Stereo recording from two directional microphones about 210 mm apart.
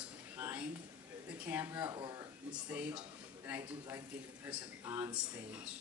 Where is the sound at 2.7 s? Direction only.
5° right (ahead or behind).